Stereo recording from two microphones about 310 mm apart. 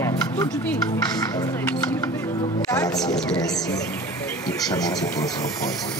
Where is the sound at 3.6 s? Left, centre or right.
Left.